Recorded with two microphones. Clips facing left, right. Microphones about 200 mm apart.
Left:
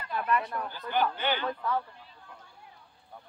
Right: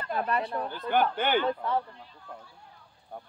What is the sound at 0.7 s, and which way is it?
Speech, 55° right (ahead or behind).